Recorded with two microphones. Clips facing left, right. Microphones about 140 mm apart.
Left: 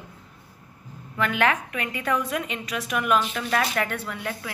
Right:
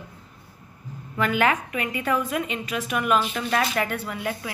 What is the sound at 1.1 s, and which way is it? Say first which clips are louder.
A woman's voice: right 1 dB; 5° right (ahead or behind).